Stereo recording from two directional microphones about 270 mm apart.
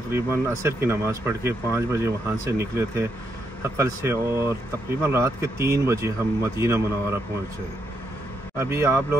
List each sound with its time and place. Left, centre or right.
0.1 s speech: centre
8.5 s speech: centre